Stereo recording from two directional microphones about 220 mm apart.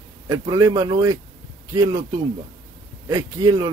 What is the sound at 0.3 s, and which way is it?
Speech, 15° right (ahead or behind).